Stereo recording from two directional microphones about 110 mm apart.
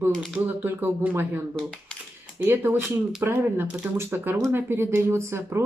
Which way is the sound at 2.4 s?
20° right (ahead or behind).